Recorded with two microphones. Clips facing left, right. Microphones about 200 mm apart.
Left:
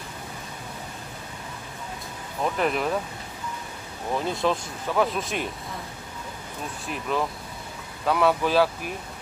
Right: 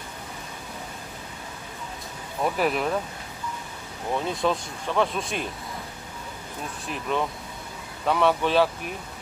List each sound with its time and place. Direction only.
2.4 s speech: 5° right (ahead or behind)
4.1 s speech: centre (ahead or behind)
6.9 s speech: centre (ahead or behind)